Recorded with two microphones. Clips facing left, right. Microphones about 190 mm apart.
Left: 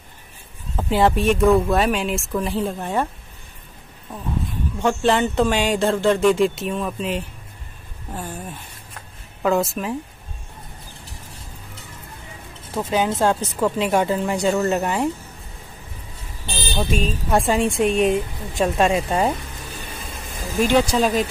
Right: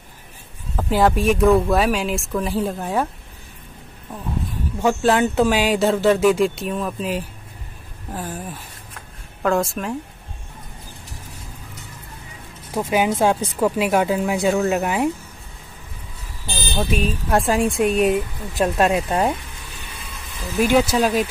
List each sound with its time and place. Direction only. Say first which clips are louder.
0.7 s speech: even; centre (ahead or behind)
4.8 s speech: right 1 dB; 5° right (ahead or behind)
12.7 s speech: right 2 dB; 10° right (ahead or behind)
16.7 s speech: right 1 dB; 5° right (ahead or behind)
19.7 s vehicle: left 4 dB; 45° left (ahead or behind)
20.5 s speech: right 1 dB; 5° right (ahead or behind)